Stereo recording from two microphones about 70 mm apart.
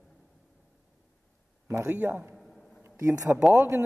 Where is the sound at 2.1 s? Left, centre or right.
Centre.